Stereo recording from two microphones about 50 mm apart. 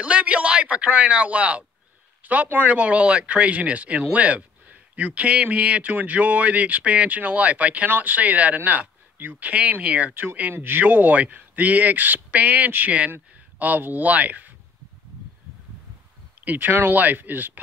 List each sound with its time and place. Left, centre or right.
0.0 s speech: right
2.2 s speech: right
2.7 s speech: right
10.5 s speech: right
16.4 s speech: right